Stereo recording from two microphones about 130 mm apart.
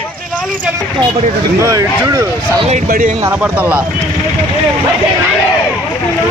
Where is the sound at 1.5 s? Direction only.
25° right (ahead or behind).